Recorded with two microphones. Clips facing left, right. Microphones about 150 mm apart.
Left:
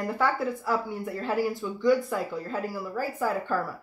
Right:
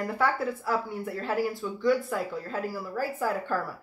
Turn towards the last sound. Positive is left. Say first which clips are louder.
# left 1 dB
turn(degrees=0)  # may be behind; listen again after turning